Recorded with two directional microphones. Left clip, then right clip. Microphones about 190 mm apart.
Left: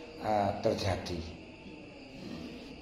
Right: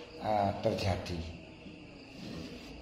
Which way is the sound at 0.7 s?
30° right (ahead or behind).